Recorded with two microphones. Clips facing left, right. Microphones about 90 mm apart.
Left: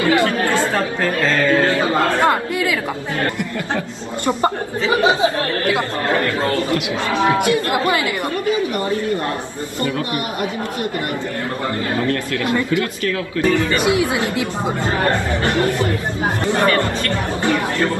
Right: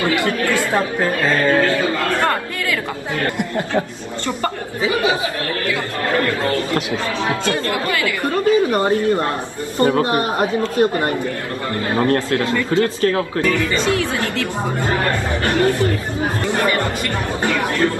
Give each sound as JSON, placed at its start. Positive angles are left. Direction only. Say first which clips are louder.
{"t": 0.0, "sound": "chatter", "louder": "left 3 dB", "side_deg": -20}
{"t": 0.7, "sound": "speech", "louder": "right 1 dB", "side_deg": -20}
{"t": 1.6, "sound": "speech", "louder": "left 1 dB", "side_deg": 25}
{"t": 4.3, "sound": "speech", "louder": "left 5 dB", "side_deg": 25}
{"t": 7.2, "sound": "speech", "louder": "left 5 dB", "side_deg": 20}
{"t": 8.5, "sound": "speech", "louder": "right 5 dB", "side_deg": -35}
{"t": 12.0, "sound": "speech", "louder": "right 7 dB", "side_deg": -35}
{"t": 13.4, "sound": "speech", "louder": "left 5 dB", "side_deg": 25}
{"t": 13.8, "sound": "speech", "louder": "left 2 dB", "side_deg": 15}
{"t": 17.4, "sound": "speech", "louder": "right 1 dB", "side_deg": 25}